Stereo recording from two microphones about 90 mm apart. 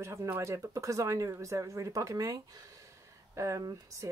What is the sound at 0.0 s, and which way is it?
Speech, 30° right (ahead or behind).